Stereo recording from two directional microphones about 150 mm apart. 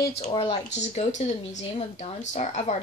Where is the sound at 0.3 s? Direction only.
35° left (ahead or behind).